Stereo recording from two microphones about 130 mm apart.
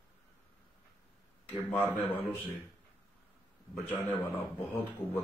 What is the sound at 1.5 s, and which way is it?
Speech, 15° left (ahead or behind).